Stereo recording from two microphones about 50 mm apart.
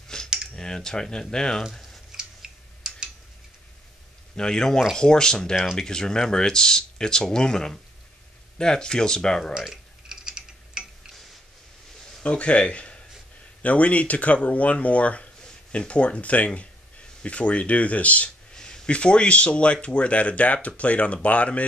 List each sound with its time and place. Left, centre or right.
0.1 s cutlery: centre
0.6 s speech: centre
1.6 s speech: centre
2.1 s a sound: centre
4.4 s speech: centre
9.6 s typing: centre
12.2 s speech: left
18.5 s speech: centre